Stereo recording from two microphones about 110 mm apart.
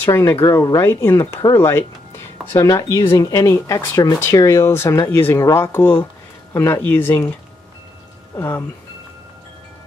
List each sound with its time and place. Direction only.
0.0 s speech: 25° left (ahead or behind)
6.8 s speech: 20° left (ahead or behind)
8.4 s speech: 20° left (ahead or behind)